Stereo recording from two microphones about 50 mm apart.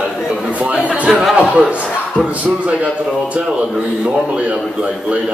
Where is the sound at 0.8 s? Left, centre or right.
Right.